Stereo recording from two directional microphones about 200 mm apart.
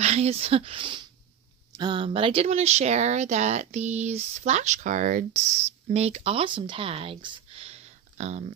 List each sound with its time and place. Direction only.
0.0 s speech: 30° right (ahead or behind)